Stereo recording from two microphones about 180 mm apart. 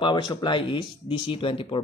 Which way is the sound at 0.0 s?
25° left (ahead or behind).